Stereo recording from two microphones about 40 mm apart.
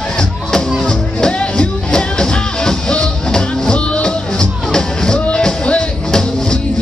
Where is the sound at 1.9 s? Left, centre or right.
Centre.